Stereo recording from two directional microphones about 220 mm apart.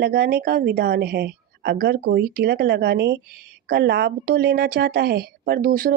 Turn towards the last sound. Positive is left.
turn(degrees=-40)  # may be behind; listen again after turning